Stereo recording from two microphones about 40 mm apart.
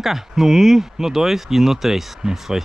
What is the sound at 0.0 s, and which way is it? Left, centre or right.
Speech, centre.